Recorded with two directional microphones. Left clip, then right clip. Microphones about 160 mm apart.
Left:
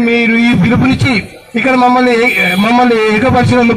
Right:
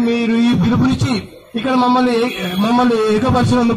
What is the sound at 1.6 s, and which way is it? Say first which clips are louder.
Music: left 6 dB; 45° right (ahead or behind).